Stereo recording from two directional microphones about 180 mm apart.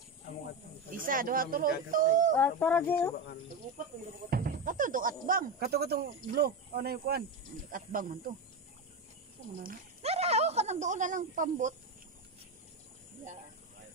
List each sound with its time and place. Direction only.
0.9 s speech: 50° right (ahead or behind)
2.3 s speech: 10° left (ahead or behind)
4.3 s speech: 50° right (ahead or behind)
7.7 s speech: 50° right (ahead or behind)
10.0 s a sound: 35° right (ahead or behind)